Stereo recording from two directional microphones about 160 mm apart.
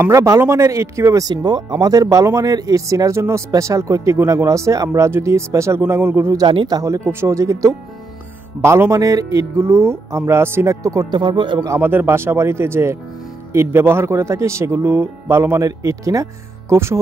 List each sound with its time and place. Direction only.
0.0 s speech: 20° right (ahead or behind)
6.4 s speech: 30° right (ahead or behind)
11.6 s speech: 15° right (ahead or behind)